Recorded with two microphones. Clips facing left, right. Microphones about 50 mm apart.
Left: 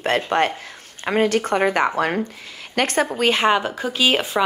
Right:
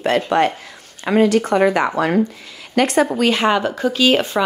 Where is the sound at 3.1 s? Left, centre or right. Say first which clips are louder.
Right 2 dB; left.